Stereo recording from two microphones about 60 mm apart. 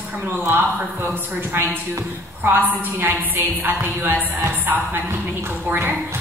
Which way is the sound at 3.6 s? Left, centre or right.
Right.